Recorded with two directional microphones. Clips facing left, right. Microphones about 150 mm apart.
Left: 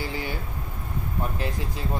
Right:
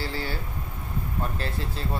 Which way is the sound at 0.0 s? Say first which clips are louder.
Left 1 dB; 15° left (ahead or behind).